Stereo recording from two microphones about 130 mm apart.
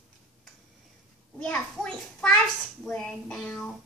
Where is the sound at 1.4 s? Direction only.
5° left (ahead or behind).